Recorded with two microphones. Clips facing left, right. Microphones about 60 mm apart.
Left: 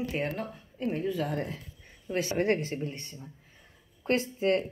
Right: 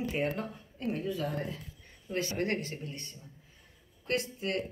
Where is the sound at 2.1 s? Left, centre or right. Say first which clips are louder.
Left 5 dB; centre.